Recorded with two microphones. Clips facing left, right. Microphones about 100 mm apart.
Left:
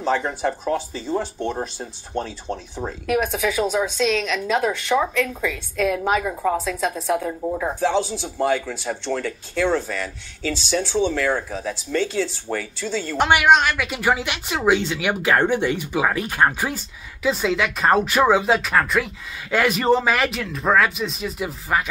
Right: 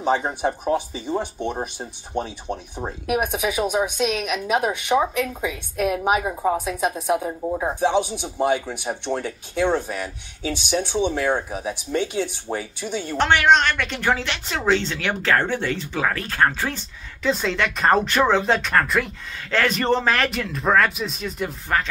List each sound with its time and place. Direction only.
0.0 s a woman's voice: 20° right (ahead or behind)
13.2 s a woman's voice: 10° left (ahead or behind)
16.7 s speech: 5° left (ahead or behind)